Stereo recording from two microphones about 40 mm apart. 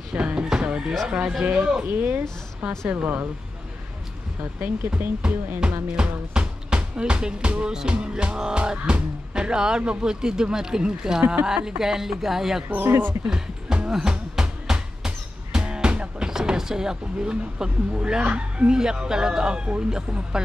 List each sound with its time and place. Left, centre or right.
0.1 s chicken: right
1.0 s music: right
1.4 s speech: right
1.9 s speech: right
2.9 s speech: right
4.6 s speech: right
5.9 s speech: right
7.9 s music: right
11.4 s speech: centre
12.6 s speech: right
13.3 s music: centre
16.3 s speech: centre
18.7 s music: centre
20.4 s speech: centre